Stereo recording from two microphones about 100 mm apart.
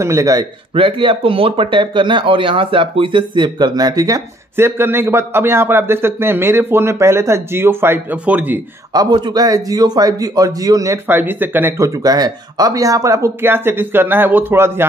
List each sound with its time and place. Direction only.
0.0 s a man's voice: 35° right (ahead or behind)
0.7 s speech: 65° right (ahead or behind); by 4.2 s 40° right (ahead or behind)
4.6 s a man's voice: 25° right (ahead or behind)
8.9 s a man's voice: 45° right (ahead or behind)
11.1 s a man's voice: 20° right (ahead or behind)